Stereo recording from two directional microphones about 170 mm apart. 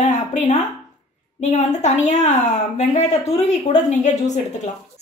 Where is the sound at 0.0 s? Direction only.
45° left (ahead or behind).